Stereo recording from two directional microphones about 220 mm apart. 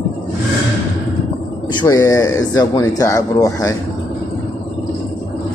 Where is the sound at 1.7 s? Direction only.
15° left (ahead or behind).